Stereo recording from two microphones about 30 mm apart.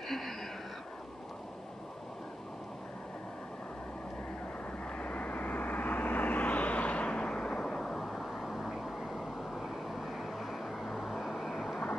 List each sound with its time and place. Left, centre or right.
4.9 s vehicle: left
8.0 s vehicle: centre
10.1 s vehicle: centre